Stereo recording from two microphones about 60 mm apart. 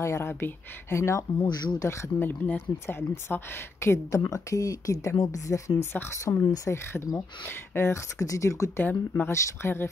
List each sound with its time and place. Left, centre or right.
0.0 s speech: left
2.1 s speech: left
4.2 s speech: left
5.8 s speech: left
6.2 s speech: left
6.7 s speech: left
8.7 s speech: left